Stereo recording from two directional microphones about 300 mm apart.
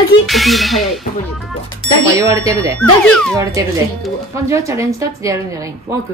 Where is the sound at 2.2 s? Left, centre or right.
Centre.